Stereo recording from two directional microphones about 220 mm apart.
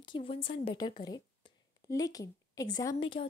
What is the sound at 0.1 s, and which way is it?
Speech, 25° left (ahead or behind).